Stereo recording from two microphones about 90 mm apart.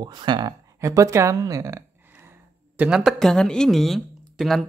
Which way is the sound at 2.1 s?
25° right (ahead or behind).